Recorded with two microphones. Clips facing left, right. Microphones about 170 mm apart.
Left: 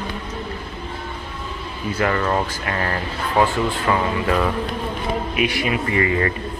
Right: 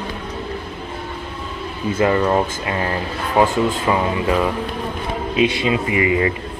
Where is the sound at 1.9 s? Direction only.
20° right (ahead or behind).